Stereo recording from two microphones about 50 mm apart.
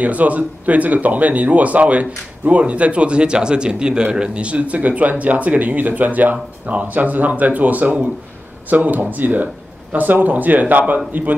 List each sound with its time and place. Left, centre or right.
0.0 s speech: right